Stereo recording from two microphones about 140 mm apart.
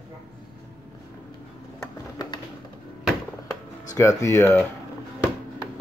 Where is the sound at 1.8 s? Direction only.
25° left (ahead or behind).